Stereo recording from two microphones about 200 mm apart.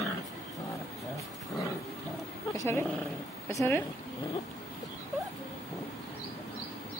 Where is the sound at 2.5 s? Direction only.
15° left (ahead or behind).